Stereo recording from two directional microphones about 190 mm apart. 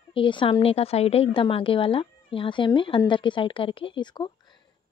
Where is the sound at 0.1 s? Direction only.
25° left (ahead or behind).